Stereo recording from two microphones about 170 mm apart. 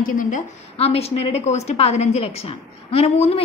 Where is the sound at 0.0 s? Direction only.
50° left (ahead or behind).